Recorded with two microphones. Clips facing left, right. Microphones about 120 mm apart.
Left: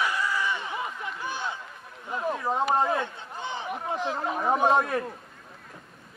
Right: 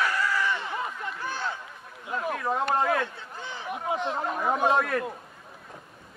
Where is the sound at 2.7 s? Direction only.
20° left (ahead or behind).